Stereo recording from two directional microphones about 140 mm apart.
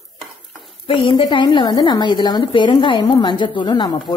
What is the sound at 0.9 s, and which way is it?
Speech, 40° left (ahead or behind).